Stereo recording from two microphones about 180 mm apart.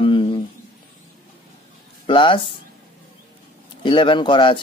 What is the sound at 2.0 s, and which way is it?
Speech, 25° left (ahead or behind).